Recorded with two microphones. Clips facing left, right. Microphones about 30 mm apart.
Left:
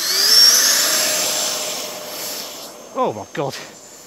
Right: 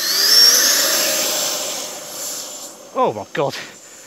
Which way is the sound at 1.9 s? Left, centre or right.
Left.